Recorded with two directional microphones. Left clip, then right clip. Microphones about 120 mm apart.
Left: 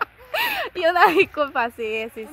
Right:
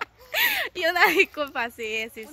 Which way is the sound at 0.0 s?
55° right (ahead or behind).